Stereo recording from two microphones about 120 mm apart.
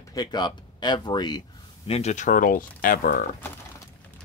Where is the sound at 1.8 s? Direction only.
60° left (ahead or behind).